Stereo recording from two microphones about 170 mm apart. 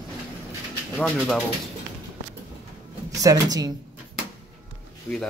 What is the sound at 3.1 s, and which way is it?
Speech, 20° right (ahead or behind).